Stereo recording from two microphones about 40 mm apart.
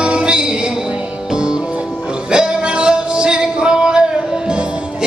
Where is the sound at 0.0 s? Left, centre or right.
Right.